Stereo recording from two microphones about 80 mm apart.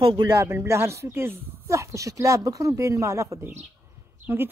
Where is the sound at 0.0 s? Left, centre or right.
Right.